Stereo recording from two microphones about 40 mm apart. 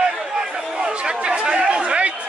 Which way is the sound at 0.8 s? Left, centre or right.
Right.